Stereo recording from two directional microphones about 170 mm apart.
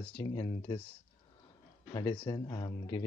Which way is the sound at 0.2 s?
25° left (ahead or behind).